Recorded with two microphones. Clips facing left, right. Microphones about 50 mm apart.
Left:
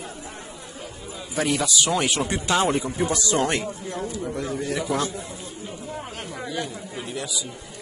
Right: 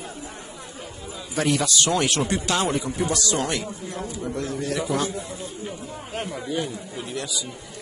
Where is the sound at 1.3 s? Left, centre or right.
Centre.